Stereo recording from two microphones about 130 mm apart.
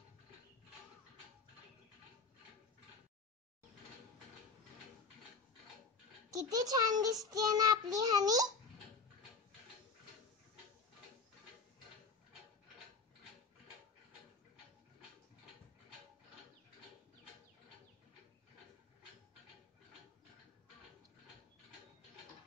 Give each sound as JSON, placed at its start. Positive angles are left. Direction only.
{"t": 6.3, "sound": "a child's voice", "side_deg": -30}